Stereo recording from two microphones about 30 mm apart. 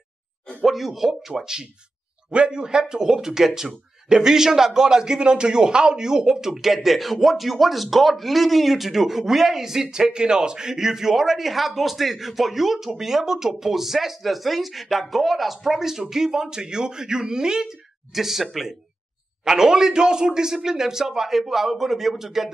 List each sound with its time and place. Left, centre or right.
0.7 s a man's voice: centre
1.3 s speech: right
3.0 s a man's voice: centre
18.1 s a man's voice: centre
19.4 s a man's voice: centre